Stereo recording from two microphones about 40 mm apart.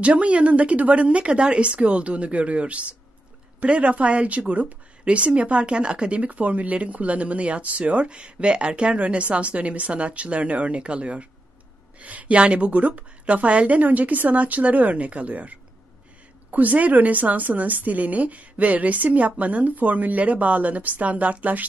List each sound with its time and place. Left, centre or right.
0.0 s speech: right